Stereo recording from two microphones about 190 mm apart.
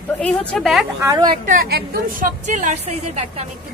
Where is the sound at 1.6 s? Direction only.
50° right (ahead or behind); by 3.4 s 35° right (ahead or behind).